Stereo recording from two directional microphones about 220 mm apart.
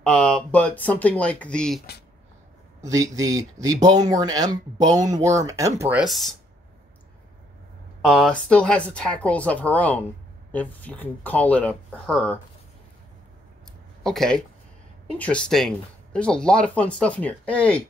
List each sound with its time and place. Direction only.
0.1 s speech: 5° left (ahead or behind)
2.8 s speech: 15° right (ahead or behind)
8.0 s speech: centre (ahead or behind)
14.0 s speech: centre (ahead or behind)